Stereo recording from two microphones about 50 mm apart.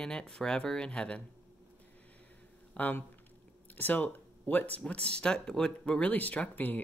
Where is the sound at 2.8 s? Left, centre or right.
Left; by 6.0 s centre.